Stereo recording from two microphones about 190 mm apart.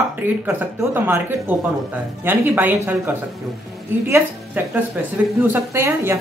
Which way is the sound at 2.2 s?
10° right (ahead or behind).